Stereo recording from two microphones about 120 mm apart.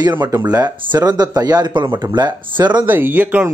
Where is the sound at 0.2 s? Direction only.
30° right (ahead or behind).